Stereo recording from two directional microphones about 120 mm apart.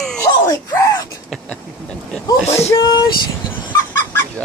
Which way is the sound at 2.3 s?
20° left (ahead or behind).